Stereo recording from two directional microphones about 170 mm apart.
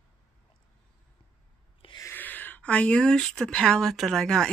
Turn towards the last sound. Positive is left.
turn(degrees=5)  # may be behind; listen again after turning